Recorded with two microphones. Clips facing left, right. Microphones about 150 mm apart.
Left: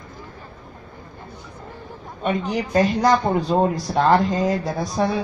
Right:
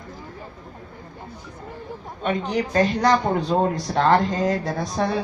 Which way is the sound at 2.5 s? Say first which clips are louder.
Left 1 dB; 10° left (ahead or behind).